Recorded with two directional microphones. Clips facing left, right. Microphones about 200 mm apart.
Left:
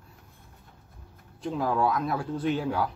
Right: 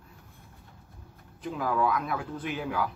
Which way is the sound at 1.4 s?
30° left (ahead or behind).